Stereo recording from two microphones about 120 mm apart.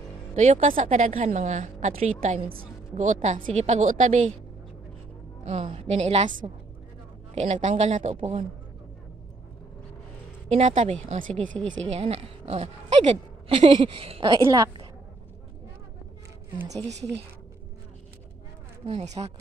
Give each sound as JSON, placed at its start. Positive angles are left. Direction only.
{"t": 0.5, "sound": "a woman's voice", "side_deg": -90}
{"t": 2.9, "sound": "a woman's voice", "side_deg": -90}
{"t": 3.5, "sound": "a woman's voice", "side_deg": -75}
{"t": 5.4, "sound": "a woman's voice", "side_deg": -70}
{"t": 6.4, "sound": "a woman's voice", "side_deg": -50}
{"t": 7.3, "sound": "a man's voice", "side_deg": -70}
{"t": 10.5, "sound": "a woman's voice", "side_deg": -80}
{"t": 11.6, "sound": "speech", "side_deg": 10}
{"t": 11.9, "sound": "a woman's voice", "side_deg": -60}
{"t": 16.8, "sound": "a woman's voice", "side_deg": -25}
{"t": 18.9, "sound": "a man's voice", "side_deg": -60}